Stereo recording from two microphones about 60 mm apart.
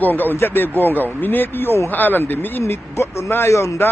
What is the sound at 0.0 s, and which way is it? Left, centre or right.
Speech, left.